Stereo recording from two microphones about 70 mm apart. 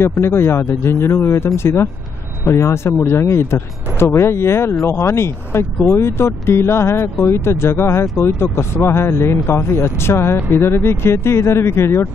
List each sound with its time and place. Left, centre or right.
0.0 s speech: left